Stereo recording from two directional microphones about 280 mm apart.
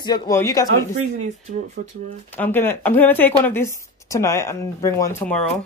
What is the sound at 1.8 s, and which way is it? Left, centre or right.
Speech, right.